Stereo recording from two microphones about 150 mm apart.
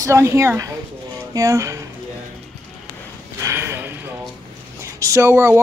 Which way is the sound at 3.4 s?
15° right (ahead or behind).